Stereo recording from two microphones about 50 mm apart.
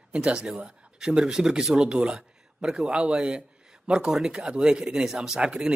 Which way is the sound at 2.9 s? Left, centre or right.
Centre.